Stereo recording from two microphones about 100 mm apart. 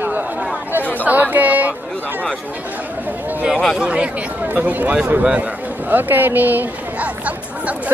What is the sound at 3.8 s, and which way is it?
Speech, 10° right (ahead or behind).